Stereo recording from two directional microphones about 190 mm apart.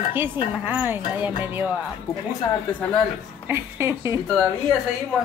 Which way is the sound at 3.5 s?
15° right (ahead or behind).